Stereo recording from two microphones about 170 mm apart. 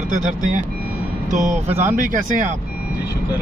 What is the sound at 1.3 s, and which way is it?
Speech, 45° right (ahead or behind).